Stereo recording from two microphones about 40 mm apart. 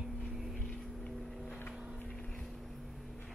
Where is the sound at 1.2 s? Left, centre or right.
Centre.